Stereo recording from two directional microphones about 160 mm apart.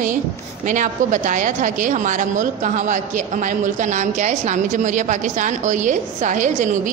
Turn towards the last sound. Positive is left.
turn(degrees=-50)  # may be behind; listen again after turning